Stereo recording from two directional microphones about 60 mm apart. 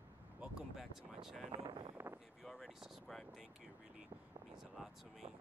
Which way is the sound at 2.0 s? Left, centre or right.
Right.